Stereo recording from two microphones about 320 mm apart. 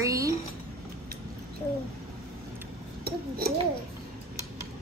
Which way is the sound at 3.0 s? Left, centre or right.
Right.